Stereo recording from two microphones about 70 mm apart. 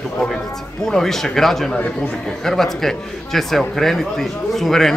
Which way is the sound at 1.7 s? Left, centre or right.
Left.